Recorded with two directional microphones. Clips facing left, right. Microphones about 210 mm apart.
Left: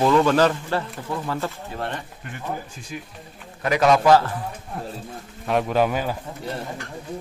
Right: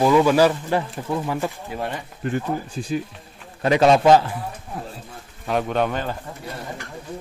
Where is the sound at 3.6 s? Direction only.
30° right (ahead or behind).